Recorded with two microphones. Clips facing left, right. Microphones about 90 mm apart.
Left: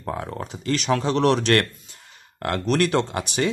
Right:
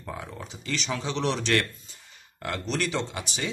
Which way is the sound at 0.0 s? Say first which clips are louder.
Left 8 dB; 45° left (ahead or behind).